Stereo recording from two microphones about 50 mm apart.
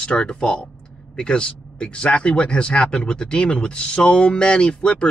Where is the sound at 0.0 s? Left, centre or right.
Left.